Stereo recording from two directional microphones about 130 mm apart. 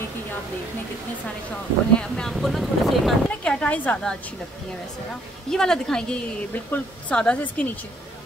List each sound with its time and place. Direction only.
2.0 s speech: 5° left (ahead or behind)
5.5 s a woman's voice: 5° left (ahead or behind)